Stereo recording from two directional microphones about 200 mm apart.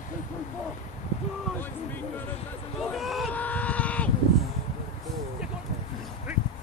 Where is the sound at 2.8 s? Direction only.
Centre (ahead or behind).